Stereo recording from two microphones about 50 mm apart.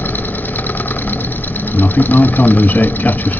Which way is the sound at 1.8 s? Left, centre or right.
Left.